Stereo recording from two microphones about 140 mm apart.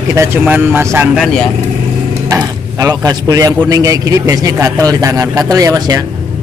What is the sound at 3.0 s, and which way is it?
Speech, 25° right (ahead or behind).